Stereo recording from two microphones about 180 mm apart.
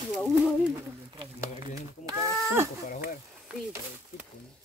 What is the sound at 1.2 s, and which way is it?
Speech, 25° right (ahead or behind).